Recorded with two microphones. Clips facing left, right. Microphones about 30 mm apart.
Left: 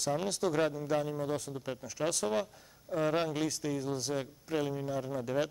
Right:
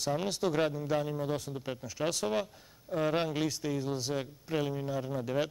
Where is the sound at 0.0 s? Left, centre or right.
Centre.